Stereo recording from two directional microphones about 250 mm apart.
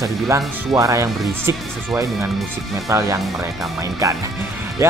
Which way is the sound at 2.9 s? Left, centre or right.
Centre.